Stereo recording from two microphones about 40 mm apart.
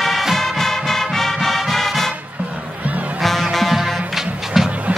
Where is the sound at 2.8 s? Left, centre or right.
Right.